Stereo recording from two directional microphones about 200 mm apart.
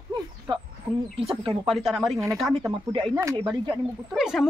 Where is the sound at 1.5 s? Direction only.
Centre (ahead or behind).